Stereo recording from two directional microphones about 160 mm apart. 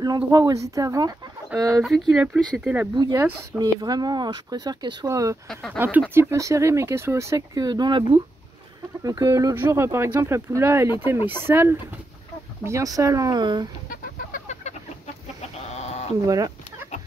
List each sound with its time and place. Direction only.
0.0 s speech: 25° right (ahead or behind)
1.5 s speech: 5° right (ahead or behind)
3.2 s speech: 20° right (ahead or behind)
5.5 s speech: 5° left (ahead or behind)
5.8 s speech: 10° right (ahead or behind); by 13.7 s 25° right (ahead or behind)
13.8 s chicken: 50° left (ahead or behind)
15.7 s sheep: 45° left (ahead or behind)
16.3 s speech: 20° right (ahead or behind)